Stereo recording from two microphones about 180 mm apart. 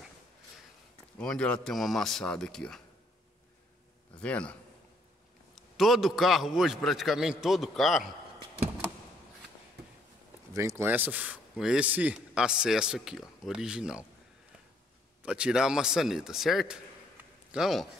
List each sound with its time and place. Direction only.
1.1 s a man's voice: 5° left (ahead or behind)
4.2 s a man's voice: 5° left (ahead or behind)
5.8 s a man's voice: centre (ahead or behind)
10.5 s a man's voice: 15° right (ahead or behind)
15.2 s a man's voice: 5° right (ahead or behind)